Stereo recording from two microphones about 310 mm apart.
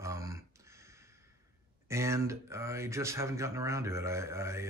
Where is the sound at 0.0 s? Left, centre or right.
Centre.